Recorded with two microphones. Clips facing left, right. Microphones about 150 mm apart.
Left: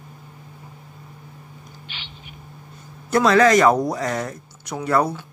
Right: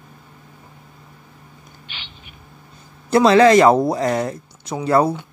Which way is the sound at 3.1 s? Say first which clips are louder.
Right 4 dB; 30° right (ahead or behind).